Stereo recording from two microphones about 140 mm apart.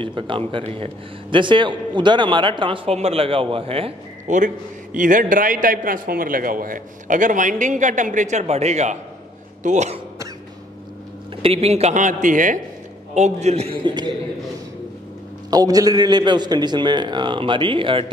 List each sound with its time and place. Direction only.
0.0 s a man's voice: 35° right (ahead or behind)
4.3 s a man's voice: 60° right (ahead or behind)
11.4 s a man's voice: 45° right (ahead or behind); by 12.5 s 65° right (ahead or behind)
13.1 s a man's voice: 55° right (ahead or behind)
13.8 s a man's voice: 35° right (ahead or behind)
15.5 s a man's voice: 25° right (ahead or behind)